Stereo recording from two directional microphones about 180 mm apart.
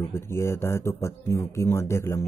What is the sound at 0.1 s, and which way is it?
Speech, 15° left (ahead or behind).